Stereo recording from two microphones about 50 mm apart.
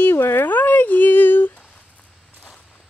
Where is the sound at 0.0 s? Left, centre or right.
Left.